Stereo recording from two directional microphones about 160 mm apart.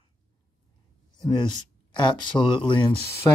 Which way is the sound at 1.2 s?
25° left (ahead or behind).